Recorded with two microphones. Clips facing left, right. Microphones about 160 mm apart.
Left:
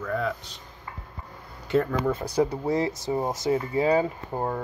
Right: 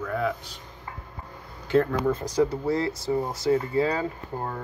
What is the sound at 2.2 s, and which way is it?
Speech, 15° left (ahead or behind).